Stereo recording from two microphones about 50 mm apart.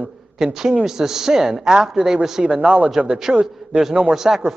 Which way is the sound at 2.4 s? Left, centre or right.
Right.